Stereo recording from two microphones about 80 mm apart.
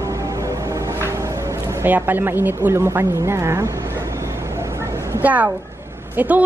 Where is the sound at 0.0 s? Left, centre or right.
Right.